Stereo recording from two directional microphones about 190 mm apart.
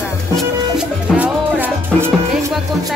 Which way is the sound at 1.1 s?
10° right (ahead or behind).